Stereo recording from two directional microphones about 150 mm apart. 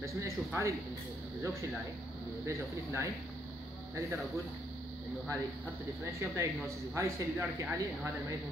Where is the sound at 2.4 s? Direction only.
20° right (ahead or behind).